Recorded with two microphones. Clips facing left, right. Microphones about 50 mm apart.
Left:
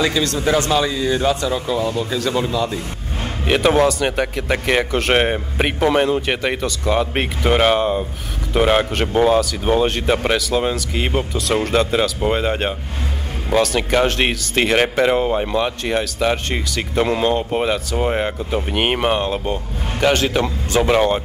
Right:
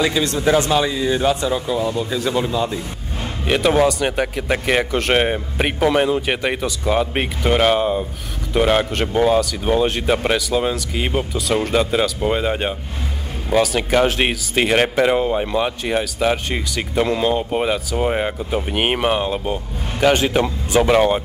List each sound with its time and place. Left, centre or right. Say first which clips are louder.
0.0 s speech: right 1 dB; right
1.5 s speech: even; centre
2.0 s speech: even; centre
3.4 s a man's voice: left 1 dB; centre
15.5 s a man's voice: even; centre